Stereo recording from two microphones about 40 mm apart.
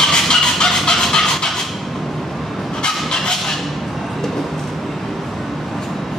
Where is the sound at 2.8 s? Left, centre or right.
Centre.